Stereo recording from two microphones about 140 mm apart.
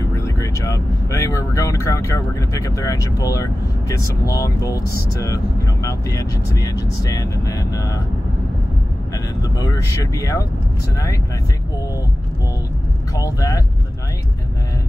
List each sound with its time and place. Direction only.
0.1 s speech: 20° left (ahead or behind)
9.4 s speech: 25° left (ahead or behind)
13.1 s speech: 25° left (ahead or behind)